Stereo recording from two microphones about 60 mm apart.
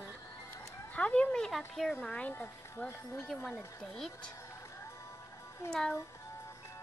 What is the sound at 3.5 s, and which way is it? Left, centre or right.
Speech, centre.